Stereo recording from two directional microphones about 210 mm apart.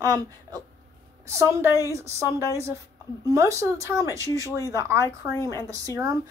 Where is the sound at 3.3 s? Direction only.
15° right (ahead or behind).